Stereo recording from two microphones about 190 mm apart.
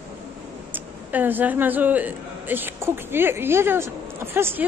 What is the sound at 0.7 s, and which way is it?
A woman's voice, 10° right (ahead or behind).